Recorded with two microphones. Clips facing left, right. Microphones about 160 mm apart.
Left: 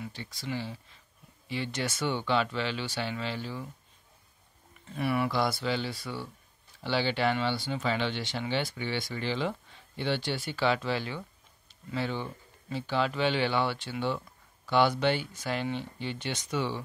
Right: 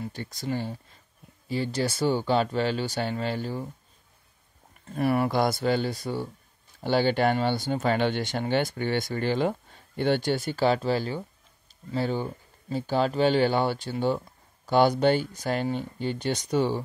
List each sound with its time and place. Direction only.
0.0 s speech: 45° right (ahead or behind)
4.8 s speech: 45° right (ahead or behind)